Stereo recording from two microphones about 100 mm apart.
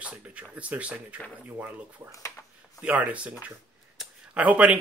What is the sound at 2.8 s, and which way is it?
Speech, 15° right (ahead or behind).